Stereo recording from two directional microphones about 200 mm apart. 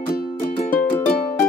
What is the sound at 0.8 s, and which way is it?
Music, 10° left (ahead or behind).